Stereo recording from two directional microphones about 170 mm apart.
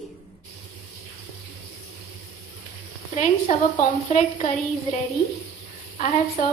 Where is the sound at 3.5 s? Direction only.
45° left (ahead or behind).